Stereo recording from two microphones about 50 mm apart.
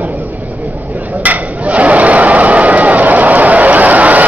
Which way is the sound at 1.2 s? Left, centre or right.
Right.